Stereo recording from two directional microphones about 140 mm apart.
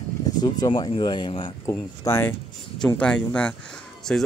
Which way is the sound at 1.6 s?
20° left (ahead or behind).